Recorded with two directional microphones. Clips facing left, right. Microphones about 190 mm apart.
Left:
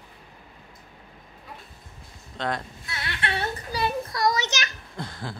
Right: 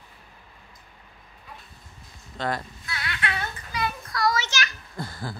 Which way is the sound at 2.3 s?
Centre (ahead or behind).